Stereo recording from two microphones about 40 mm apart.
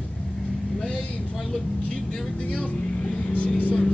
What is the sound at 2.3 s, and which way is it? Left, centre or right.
Speech, left.